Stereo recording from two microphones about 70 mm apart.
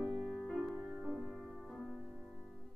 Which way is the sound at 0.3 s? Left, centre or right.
Centre.